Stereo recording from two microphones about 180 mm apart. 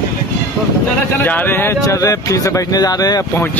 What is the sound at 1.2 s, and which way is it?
Speech, 10° left (ahead or behind).